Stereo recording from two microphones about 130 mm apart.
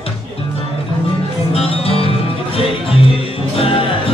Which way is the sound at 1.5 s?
50° left (ahead or behind).